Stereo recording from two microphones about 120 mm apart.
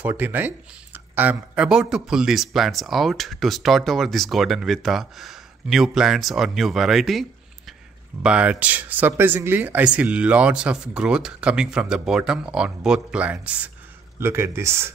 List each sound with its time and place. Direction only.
0.0 s speech: 15° right (ahead or behind)